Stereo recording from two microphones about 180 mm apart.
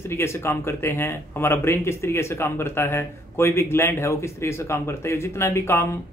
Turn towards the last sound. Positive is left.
turn(degrees=15)  # may be behind; listen again after turning